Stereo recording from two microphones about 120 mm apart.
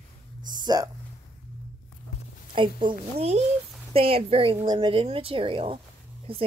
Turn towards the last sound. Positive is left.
turn(degrees=-50)  # may be behind; listen again after turning